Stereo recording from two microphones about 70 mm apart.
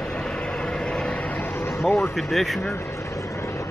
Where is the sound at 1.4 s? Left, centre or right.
Left.